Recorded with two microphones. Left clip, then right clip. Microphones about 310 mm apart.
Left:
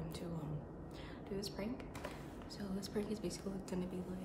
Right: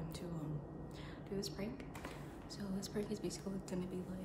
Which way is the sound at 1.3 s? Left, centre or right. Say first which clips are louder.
Even; centre.